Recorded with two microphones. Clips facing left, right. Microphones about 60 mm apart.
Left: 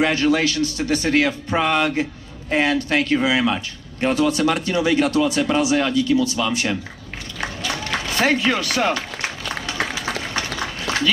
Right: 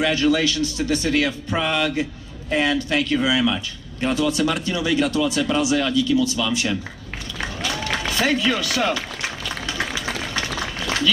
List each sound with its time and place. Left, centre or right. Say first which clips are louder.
0.0 s speech: left 1 dB; left
8.2 s speech: left 2 dB; left
9.7 s run: left 1 dB; left